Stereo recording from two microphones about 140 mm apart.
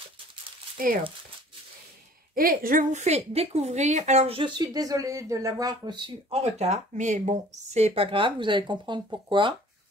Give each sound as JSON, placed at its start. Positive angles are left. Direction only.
{"t": 2.3, "sound": "a woman's voice", "side_deg": -90}
{"t": 6.4, "sound": "speech", "side_deg": -50}